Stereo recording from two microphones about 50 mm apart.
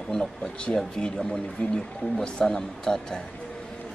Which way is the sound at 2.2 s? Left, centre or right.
Centre.